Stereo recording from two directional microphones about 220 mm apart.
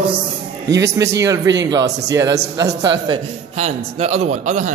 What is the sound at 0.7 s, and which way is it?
A man's voice, 15° right (ahead or behind).